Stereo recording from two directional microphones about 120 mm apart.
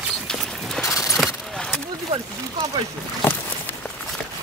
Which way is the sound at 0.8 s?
25° left (ahead or behind).